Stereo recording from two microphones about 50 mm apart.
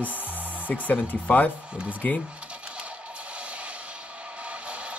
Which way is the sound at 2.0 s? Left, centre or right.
Left.